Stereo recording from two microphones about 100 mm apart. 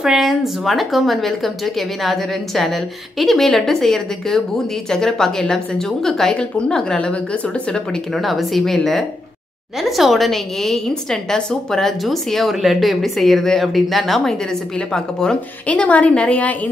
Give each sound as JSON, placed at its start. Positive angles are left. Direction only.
{"t": 0.0, "sound": "a woman's voice", "side_deg": -5}